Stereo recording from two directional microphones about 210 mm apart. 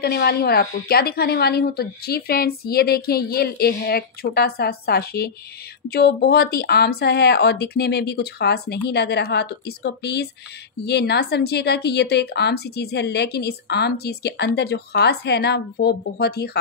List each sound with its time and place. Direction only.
0.0 s a woman's voice: 50° left (ahead or behind)